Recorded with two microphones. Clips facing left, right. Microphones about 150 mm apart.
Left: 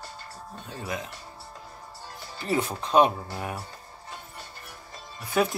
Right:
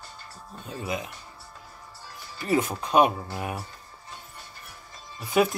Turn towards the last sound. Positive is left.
turn(degrees=-15)  # may be behind; listen again after turning